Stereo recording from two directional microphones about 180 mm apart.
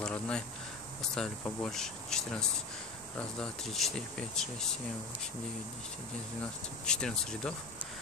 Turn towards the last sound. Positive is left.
turn(degrees=5)  # may be behind; listen again after turning